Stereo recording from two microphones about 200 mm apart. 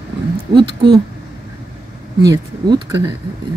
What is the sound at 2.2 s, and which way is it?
Speech, 20° right (ahead or behind).